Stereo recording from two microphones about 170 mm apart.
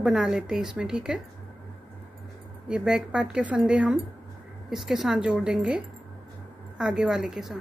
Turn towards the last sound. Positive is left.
turn(degrees=-5)  # may be behind; listen again after turning